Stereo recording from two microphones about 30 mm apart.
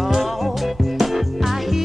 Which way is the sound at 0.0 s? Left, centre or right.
Centre.